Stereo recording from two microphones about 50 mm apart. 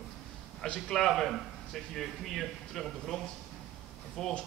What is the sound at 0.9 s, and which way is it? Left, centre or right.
Speech, centre.